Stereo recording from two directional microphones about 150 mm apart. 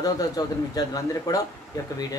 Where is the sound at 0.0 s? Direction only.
25° left (ahead or behind).